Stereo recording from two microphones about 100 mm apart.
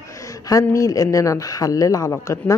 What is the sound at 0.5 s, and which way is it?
Speech, 35° left (ahead or behind).